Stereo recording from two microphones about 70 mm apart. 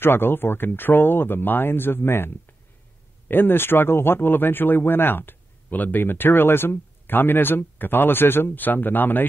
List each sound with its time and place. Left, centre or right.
0.0 s speech: left